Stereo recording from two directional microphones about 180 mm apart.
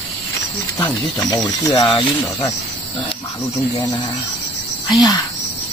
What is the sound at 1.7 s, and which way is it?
Speech, 25° left (ahead or behind).